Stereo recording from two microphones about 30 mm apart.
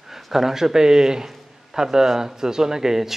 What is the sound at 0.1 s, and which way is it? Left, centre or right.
A man's voice, centre.